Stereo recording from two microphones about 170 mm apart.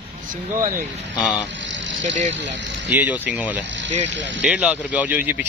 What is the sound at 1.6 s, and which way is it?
Vehicle, 90° right.